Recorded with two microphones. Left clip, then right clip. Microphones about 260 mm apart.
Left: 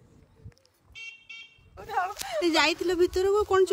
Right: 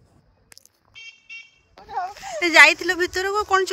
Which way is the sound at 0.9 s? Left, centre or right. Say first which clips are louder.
Right 2 dB; left.